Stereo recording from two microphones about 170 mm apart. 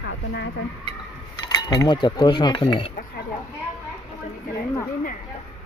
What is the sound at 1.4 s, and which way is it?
Speech, 25° left (ahead or behind).